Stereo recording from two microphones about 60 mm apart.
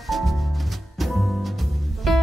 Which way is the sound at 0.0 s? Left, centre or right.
Centre.